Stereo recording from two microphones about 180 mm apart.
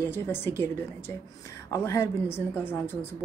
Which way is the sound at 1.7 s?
15° left (ahead or behind).